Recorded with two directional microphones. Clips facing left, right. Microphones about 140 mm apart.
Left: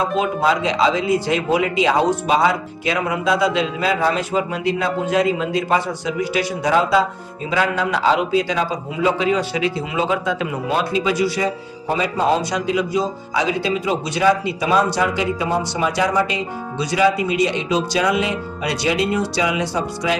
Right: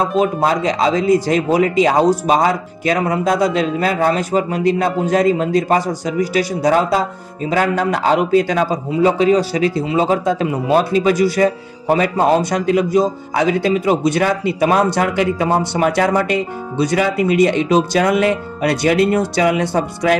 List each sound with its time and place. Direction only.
0.2 s a man's voice: 45° right (ahead or behind)
8.9 s a man's voice: 40° right (ahead or behind); by 20.2 s 55° right (ahead or behind)